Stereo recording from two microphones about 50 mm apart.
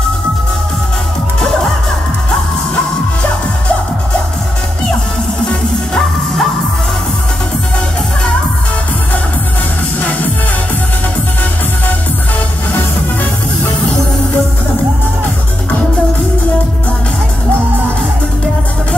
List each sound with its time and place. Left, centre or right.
5.5 s music: centre
9.9 s music: left